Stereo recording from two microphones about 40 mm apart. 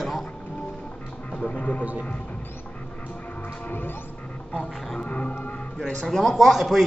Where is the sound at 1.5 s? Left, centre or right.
Left.